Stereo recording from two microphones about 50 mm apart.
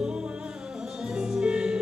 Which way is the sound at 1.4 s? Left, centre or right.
Centre.